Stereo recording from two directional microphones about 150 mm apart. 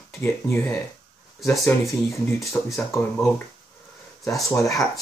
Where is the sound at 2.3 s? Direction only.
Centre (ahead or behind).